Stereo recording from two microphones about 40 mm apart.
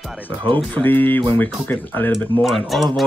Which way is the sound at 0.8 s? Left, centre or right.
Left.